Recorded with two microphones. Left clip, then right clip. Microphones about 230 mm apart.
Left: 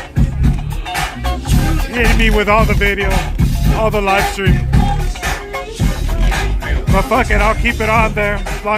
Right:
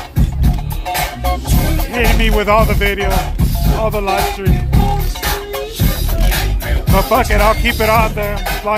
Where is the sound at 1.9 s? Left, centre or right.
Centre.